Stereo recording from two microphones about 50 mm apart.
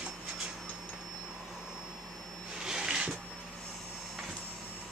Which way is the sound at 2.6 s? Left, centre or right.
Centre.